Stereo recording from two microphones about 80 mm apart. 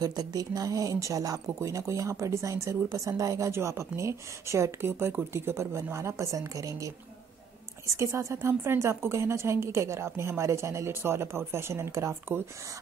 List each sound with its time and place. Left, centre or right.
0.0 s speech: right
7.9 s speech: right